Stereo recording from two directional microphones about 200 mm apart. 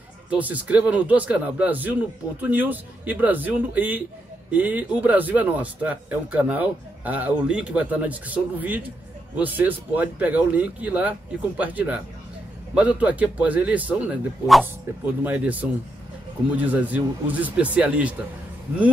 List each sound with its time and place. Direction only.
0.3 s speech: 5° right (ahead or behind)